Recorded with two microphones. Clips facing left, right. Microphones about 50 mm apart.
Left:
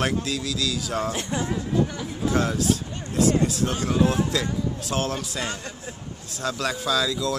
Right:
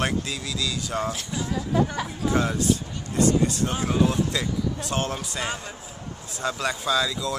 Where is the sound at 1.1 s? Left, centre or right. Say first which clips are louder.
Left 4 dB; left.